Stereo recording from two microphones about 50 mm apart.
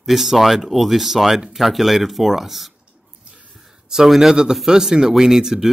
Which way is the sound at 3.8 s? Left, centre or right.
Centre.